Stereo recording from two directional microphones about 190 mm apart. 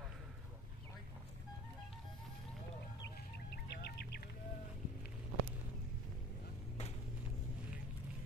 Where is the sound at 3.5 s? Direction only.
60° left (ahead or behind).